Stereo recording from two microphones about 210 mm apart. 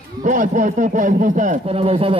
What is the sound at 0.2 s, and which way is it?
A man's voice, 35° right (ahead or behind).